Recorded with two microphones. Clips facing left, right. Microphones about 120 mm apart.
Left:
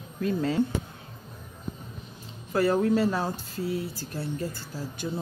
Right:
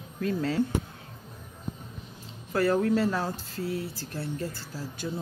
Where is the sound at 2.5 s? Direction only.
15° left (ahead or behind).